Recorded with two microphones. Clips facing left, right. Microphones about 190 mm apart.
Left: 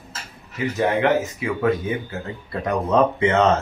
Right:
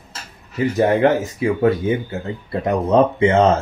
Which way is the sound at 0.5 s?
35° right (ahead or behind).